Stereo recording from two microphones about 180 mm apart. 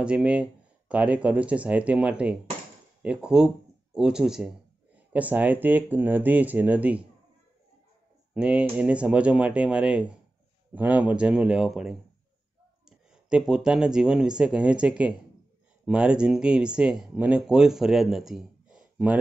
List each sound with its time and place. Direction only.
0.0 s speech: 5° right (ahead or behind)
8.4 s speech: 5° right (ahead or behind)
13.1 s speech: 5° right (ahead or behind)